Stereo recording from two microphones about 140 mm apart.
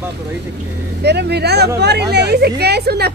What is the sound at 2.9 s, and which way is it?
Speech, 90° right.